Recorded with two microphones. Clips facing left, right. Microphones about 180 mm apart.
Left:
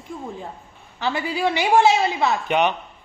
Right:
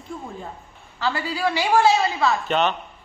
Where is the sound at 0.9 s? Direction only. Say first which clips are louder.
Left 1 dB; 20° left (ahead or behind).